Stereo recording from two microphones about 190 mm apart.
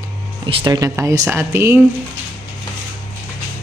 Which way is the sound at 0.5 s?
25° right (ahead or behind).